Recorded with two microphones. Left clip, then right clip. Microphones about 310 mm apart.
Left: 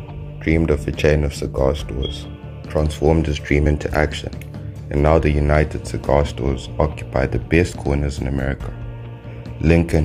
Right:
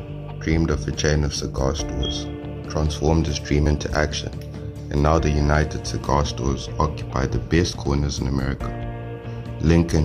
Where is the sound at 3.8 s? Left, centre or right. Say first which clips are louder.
Left 3 dB; centre.